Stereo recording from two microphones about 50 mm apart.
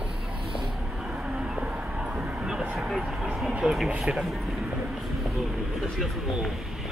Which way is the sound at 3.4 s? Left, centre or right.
Centre.